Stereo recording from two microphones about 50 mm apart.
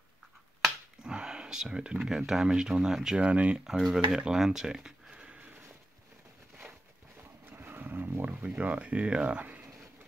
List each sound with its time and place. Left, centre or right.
1.0 s speech: centre
3.2 s speech: right
3.5 s speech: centre
7.4 s vehicle: right
8.3 s speech: right